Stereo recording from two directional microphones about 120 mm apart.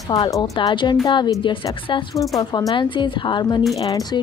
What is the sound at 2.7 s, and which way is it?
A woman's voice, 40° left (ahead or behind).